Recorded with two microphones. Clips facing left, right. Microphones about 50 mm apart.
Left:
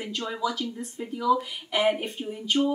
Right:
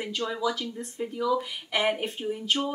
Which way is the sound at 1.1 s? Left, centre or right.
Centre.